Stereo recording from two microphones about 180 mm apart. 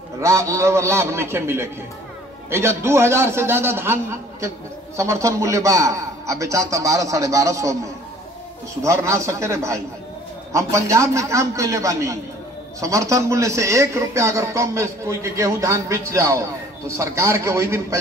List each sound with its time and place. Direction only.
0.2 s speech: 15° right (ahead or behind)